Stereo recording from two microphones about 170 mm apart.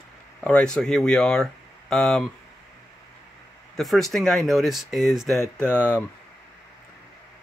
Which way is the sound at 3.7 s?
Centre (ahead or behind).